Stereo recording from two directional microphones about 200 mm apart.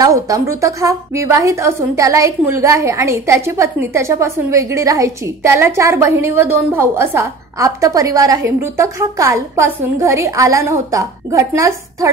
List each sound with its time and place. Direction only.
0.0 s a woman's voice: 15° right (ahead or behind)